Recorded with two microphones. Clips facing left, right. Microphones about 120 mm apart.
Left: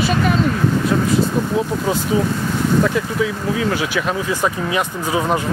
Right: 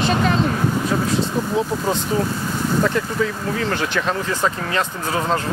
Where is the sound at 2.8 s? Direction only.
5° left (ahead or behind).